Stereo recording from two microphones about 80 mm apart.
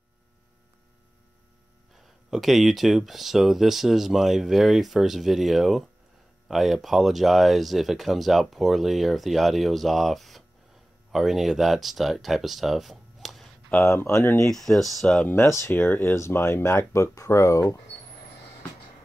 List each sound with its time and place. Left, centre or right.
2.0 s speech: centre
13.8 s speech: left
14.3 s speech: centre
15.2 s speech: left